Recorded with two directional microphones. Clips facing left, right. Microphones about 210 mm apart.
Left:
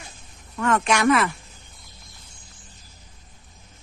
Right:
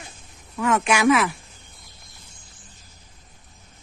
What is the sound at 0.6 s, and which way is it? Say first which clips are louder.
Speech: right 1 dB; 5° right (ahead or behind).